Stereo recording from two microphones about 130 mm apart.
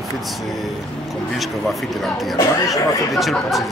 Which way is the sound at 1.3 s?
Centre (ahead or behind).